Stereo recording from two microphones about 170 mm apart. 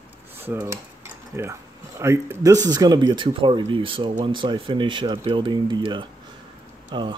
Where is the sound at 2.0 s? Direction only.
15° right (ahead or behind).